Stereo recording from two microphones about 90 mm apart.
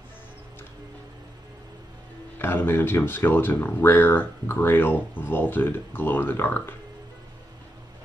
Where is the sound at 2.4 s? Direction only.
25° left (ahead or behind).